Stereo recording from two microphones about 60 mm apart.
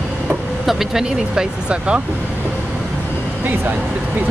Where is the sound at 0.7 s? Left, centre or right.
Centre.